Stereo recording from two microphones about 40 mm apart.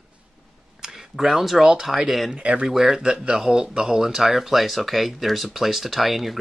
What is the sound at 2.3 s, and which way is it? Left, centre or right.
Speech, right.